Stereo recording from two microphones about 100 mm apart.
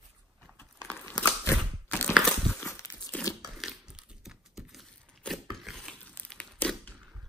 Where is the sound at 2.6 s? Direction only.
30° left (ahead or behind).